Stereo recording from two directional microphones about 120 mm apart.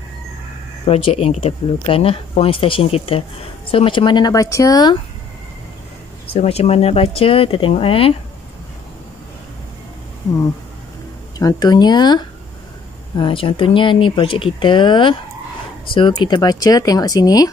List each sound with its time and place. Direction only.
0.8 s speech: 55° left (ahead or behind); by 4.9 s 30° left (ahead or behind)
6.3 s speech: 60° left (ahead or behind)
11.3 s speech: 35° left (ahead or behind)